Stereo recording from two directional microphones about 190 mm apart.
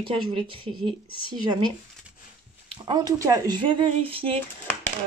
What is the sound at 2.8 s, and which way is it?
Speech, 20° right (ahead or behind).